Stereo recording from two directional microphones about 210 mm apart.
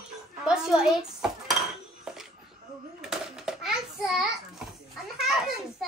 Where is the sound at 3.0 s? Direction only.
Centre (ahead or behind).